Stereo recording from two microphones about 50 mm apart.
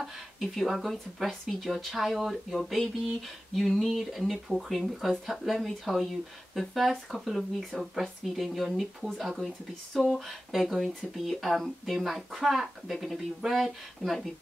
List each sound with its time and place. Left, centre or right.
0.7 s speech: centre